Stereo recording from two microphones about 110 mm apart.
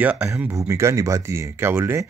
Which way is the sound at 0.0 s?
15° right (ahead or behind).